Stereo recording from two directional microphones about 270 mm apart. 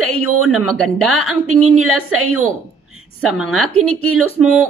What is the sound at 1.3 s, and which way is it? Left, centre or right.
A woman's voice, right.